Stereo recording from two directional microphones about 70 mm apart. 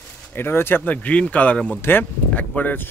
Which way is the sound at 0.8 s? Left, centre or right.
Left.